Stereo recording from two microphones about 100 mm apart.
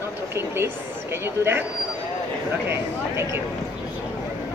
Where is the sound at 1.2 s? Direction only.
25° right (ahead or behind).